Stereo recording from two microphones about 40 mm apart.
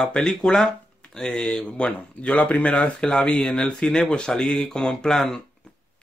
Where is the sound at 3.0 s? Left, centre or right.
Centre.